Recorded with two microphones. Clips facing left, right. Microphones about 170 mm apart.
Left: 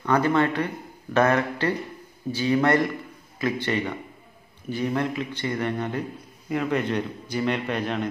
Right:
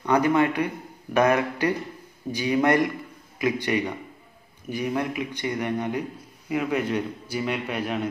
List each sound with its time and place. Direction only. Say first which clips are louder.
0.0 s a man's voice: right 1 dB; 15° right (ahead or behind)